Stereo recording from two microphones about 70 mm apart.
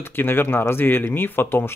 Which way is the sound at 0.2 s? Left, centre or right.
Left.